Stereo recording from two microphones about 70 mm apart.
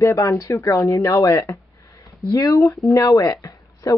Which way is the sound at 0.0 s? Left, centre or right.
Left.